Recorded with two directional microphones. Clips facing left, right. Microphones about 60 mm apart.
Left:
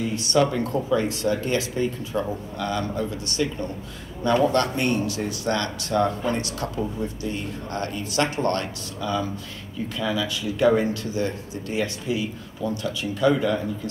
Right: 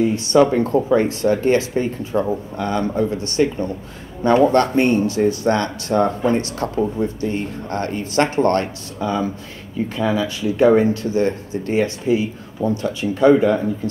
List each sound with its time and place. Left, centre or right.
0.0 s speech: right